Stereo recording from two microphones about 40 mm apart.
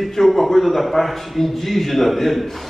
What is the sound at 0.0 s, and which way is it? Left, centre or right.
A man's voice, centre.